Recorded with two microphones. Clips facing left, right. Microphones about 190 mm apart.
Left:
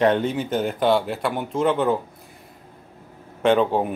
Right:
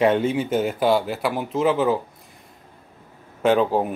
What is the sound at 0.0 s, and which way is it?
Speech, 5° right (ahead or behind).